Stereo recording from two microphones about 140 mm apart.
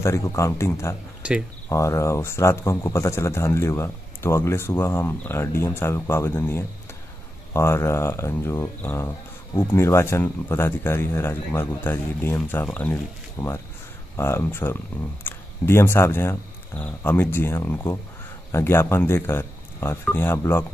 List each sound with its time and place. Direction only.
0.0 s speech: 20° left (ahead or behind)
1.2 s speech: 5° right (ahead or behind)
1.7 s speech: 20° left (ahead or behind)